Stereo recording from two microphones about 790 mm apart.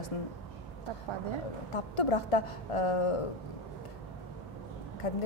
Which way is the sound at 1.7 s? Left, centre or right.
Left.